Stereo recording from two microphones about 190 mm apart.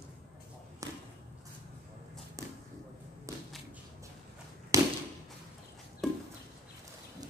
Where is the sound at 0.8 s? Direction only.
20° right (ahead or behind).